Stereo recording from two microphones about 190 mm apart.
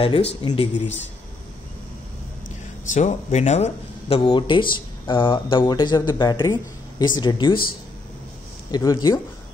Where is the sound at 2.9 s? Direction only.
35° left (ahead or behind).